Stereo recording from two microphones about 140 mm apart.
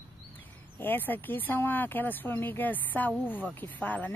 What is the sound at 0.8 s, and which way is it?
Speech, 15° left (ahead or behind).